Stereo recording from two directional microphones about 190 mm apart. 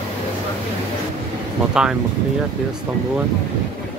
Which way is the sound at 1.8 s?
5° right (ahead or behind).